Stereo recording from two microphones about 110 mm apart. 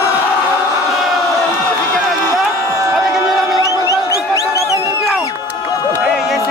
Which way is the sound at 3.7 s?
30° left (ahead or behind).